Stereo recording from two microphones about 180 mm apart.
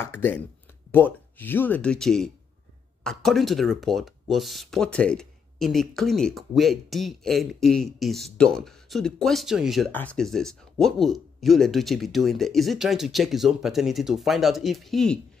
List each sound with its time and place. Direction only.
0.0 s speech: 10° left (ahead or behind)